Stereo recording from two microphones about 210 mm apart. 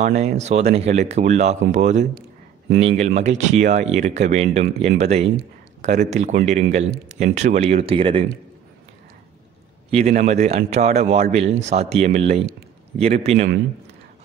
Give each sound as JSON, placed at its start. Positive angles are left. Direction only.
{"t": 0.0, "sound": "a man's voice", "side_deg": -30}
{"t": 9.8, "sound": "a man's voice", "side_deg": -30}